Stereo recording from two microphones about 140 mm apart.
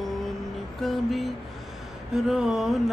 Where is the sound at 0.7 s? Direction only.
Centre (ahead or behind).